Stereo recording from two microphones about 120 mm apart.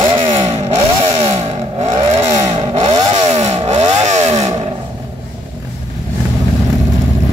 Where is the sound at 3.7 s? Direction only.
65° right (ahead or behind).